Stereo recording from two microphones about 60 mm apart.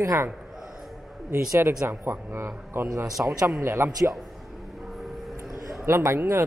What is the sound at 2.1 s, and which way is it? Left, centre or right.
Speech, right.